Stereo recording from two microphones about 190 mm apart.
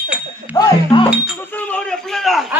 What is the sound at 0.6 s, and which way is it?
Music, 20° left (ahead or behind).